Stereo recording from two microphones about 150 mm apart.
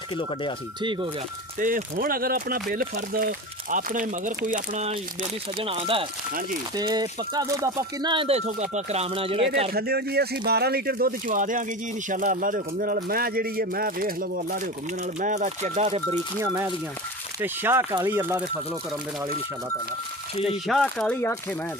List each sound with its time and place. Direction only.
0.2 s speech: 35° left (ahead or behind)
1.6 s speech: 70° right (ahead or behind)
5.6 s speech: 40° right (ahead or behind)
6.8 s speech: 25° right (ahead or behind)
8.5 s speech: 50° right (ahead or behind)
9.7 s speech: 90° right; by 14.6 s 75° right (ahead or behind)
15.1 s speech: 55° right (ahead or behind)
16.3 s speech: 15° right (ahead or behind)
20.4 s speech: centre (ahead or behind)
20.8 s speech: 10° left (ahead or behind)